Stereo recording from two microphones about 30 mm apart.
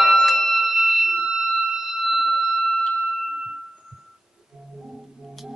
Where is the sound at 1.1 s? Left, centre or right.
Right; by 3.3 s centre.